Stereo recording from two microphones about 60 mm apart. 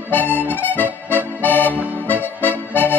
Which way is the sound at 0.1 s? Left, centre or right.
Left.